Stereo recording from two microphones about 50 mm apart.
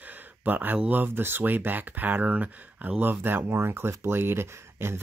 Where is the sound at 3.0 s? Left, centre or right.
Right.